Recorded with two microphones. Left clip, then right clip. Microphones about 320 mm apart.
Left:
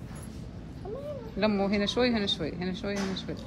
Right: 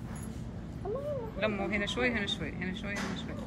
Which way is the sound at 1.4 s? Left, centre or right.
Centre.